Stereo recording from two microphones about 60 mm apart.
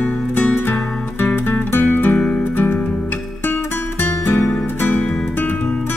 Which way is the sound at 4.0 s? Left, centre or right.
Left.